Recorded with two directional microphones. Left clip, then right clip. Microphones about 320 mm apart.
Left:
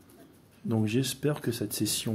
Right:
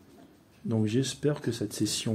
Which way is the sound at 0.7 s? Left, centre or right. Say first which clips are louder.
Even; centre.